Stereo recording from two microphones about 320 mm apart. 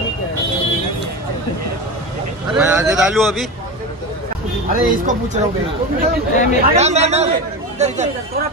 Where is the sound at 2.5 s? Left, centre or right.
Centre.